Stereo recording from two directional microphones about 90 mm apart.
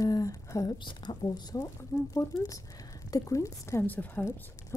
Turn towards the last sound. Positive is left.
turn(degrees=15)  # may be behind; listen again after turning